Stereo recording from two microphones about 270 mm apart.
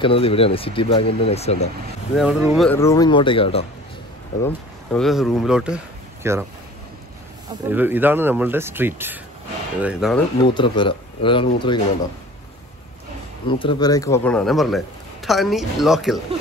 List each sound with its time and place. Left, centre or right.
0.0 s speech: centre
2.1 s speech: centre
4.4 s speech: centre
7.6 s speech: centre
10.4 s speech: centre
13.5 s speech: centre